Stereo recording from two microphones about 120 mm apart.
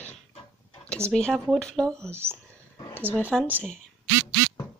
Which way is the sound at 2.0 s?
20° right (ahead or behind).